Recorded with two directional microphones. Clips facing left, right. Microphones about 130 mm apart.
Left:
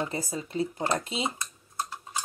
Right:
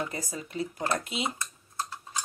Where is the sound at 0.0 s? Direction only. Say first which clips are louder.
Left 3 dB; 25° left (ahead or behind).